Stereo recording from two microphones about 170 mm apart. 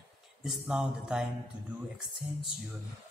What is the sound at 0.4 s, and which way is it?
Speech, 5° right (ahead or behind).